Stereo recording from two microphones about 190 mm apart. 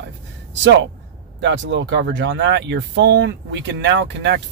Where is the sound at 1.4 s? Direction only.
70° right (ahead or behind).